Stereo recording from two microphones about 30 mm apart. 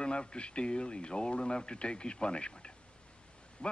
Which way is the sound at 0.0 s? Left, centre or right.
Left.